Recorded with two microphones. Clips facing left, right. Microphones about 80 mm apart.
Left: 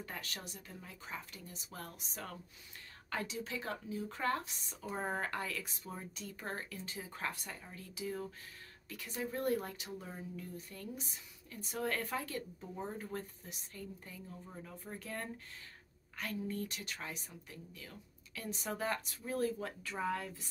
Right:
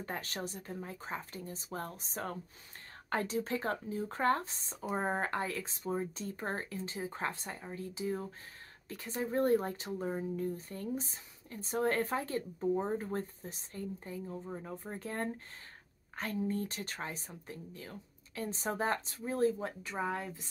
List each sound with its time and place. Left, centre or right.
0.0 s speech: right